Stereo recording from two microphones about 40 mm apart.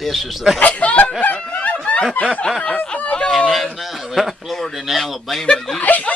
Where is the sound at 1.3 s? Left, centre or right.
Left.